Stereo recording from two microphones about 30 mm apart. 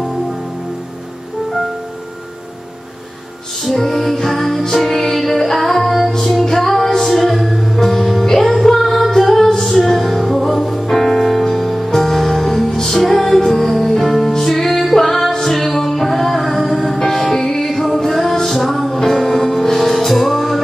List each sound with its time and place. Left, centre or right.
3.8 s music: centre
13.0 s music: centre
17.0 s music: centre